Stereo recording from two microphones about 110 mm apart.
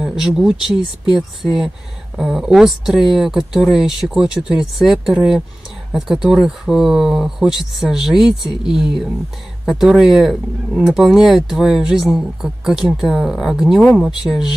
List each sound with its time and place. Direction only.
0.0 s speech: 5° right (ahead or behind)